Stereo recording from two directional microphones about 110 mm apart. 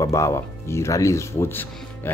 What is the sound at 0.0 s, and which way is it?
Speech, 25° left (ahead or behind).